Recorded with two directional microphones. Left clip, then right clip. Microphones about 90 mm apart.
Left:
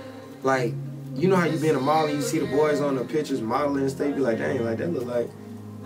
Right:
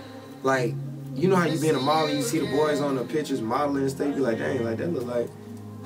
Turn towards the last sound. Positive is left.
turn(degrees=-5)  # may be behind; listen again after turning